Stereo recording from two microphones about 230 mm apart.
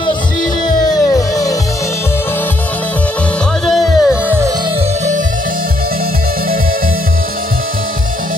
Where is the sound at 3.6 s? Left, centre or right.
Centre.